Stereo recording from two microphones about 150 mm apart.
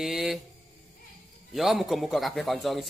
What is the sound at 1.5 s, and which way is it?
A man's voice, centre (ahead or behind).